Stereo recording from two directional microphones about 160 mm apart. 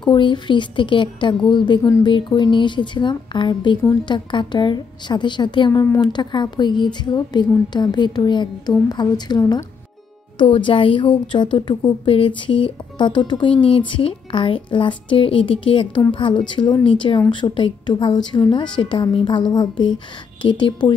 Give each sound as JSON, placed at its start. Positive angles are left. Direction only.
{"t": 0.0, "sound": "a woman's voice", "side_deg": 30}
{"t": 1.8, "sound": "a woman's voice", "side_deg": 20}
{"t": 2.1, "sound": "a woman's voice", "side_deg": 30}